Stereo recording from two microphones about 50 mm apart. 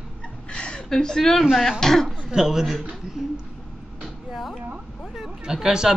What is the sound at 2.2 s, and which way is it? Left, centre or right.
Speech, centre.